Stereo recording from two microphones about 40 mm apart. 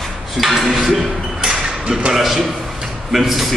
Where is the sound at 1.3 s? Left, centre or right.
Centre.